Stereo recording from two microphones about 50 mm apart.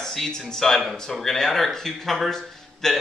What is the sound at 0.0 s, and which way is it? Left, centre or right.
A man's voice, centre.